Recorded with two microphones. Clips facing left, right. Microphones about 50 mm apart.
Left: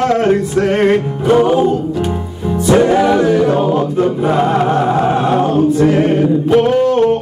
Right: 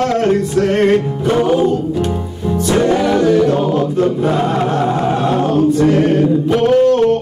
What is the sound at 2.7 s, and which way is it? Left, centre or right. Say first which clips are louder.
Choir: left 3 dB; centre.